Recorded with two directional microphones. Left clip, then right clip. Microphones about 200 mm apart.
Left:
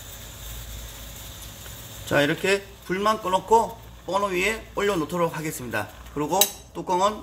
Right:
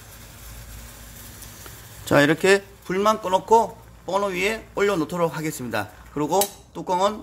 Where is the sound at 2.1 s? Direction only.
55° right (ahead or behind).